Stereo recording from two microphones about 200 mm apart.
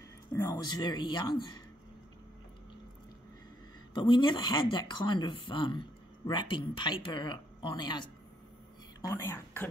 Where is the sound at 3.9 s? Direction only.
25° left (ahead or behind).